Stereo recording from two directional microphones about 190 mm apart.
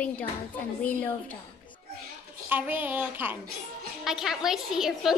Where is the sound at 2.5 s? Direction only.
10° right (ahead or behind).